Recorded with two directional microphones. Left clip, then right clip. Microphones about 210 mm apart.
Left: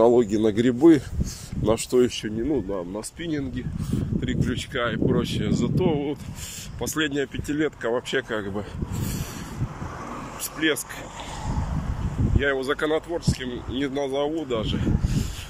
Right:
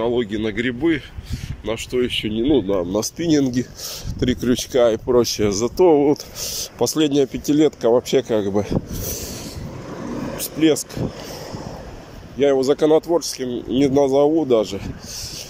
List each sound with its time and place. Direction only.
0.0 s speech: 10° left (ahead or behind)
2.2 s speech: 15° right (ahead or behind)
12.4 s speech: 20° right (ahead or behind)